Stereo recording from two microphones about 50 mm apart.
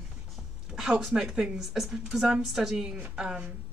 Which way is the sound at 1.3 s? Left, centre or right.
Centre.